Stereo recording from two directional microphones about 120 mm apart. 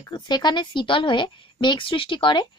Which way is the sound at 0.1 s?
35° left (ahead or behind).